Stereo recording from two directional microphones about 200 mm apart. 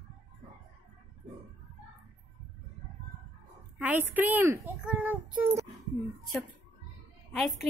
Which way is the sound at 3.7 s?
10° right (ahead or behind).